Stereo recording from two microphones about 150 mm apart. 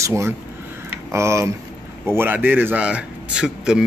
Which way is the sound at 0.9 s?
20° right (ahead or behind).